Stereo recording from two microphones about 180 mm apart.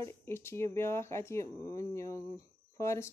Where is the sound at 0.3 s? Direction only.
15° left (ahead or behind).